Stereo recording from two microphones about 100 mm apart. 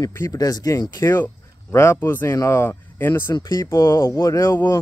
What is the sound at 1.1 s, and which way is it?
Speech, 25° left (ahead or behind).